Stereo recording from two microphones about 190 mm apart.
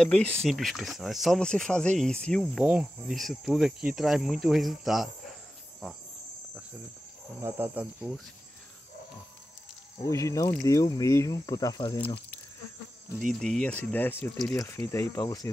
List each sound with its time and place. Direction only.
0.0 s cricket: 5° left (ahead or behind)
7.4 s cricket: 10° right (ahead or behind)
10.0 s speech: 15° left (ahead or behind)
13.3 s cricket: 5° left (ahead or behind)
14.9 s speech: 15° left (ahead or behind)